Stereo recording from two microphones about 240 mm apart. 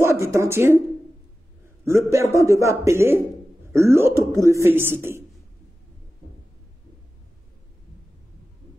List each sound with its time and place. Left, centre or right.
0.0 s a man's voice: centre
1.9 s a man's voice: centre